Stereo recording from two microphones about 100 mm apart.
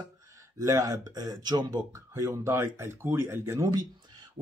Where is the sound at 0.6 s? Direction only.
30° right (ahead or behind).